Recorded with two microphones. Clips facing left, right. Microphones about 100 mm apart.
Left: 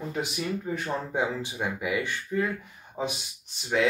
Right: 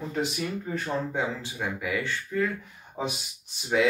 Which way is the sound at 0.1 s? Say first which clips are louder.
Right 1 dB; 5° left (ahead or behind).